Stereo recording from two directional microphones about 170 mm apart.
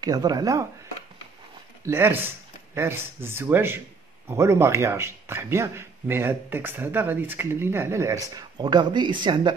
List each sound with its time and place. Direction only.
0.0 s speech: 20° right (ahead or behind)
1.9 s speech: 15° right (ahead or behind)